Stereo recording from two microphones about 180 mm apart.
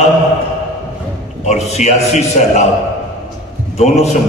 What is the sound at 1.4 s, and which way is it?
A man's voice, 40° left (ahead or behind).